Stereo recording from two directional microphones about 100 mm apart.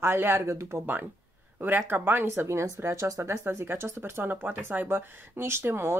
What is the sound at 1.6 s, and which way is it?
Speech, 20° right (ahead or behind).